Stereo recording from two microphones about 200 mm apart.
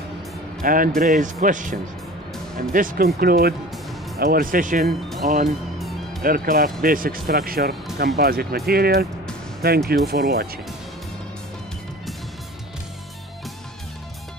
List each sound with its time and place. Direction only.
0.6 s speech: 45° right (ahead or behind)